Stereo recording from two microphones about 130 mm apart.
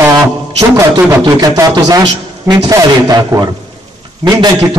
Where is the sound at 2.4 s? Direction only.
30° right (ahead or behind).